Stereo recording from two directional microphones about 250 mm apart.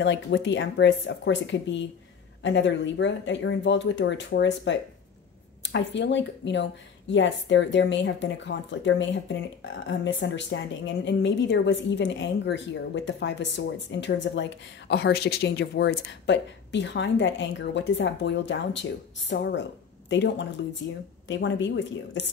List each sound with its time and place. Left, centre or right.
0.0 s a woman's voice: left